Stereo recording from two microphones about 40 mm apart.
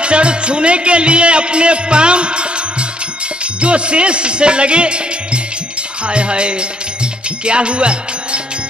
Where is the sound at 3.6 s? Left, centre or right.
Right.